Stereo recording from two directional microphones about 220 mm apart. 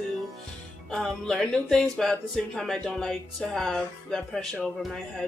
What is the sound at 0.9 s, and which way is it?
Speech, centre (ahead or behind).